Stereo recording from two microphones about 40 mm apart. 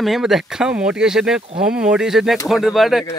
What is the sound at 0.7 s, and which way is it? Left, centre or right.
Speech, right.